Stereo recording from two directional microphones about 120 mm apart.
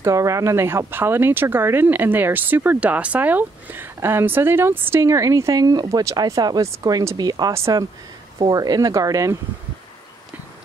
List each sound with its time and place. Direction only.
0.0 s speech: 25° right (ahead or behind)